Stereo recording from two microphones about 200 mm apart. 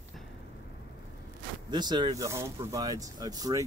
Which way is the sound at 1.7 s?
20° right (ahead or behind).